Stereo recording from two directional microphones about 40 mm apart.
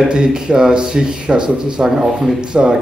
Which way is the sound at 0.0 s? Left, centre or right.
Centre.